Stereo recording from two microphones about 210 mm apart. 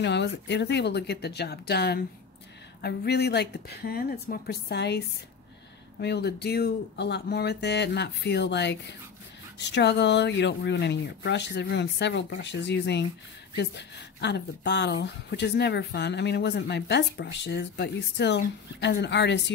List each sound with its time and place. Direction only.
0.0 s speech: 55° left (ahead or behind)